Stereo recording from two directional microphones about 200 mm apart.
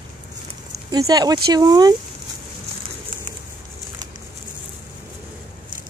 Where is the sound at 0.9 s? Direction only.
20° right (ahead or behind).